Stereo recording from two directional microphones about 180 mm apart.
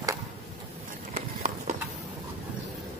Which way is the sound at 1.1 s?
50° right (ahead or behind).